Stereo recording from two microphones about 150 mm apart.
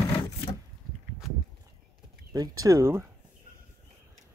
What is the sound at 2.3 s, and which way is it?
Speech, 25° right (ahead or behind).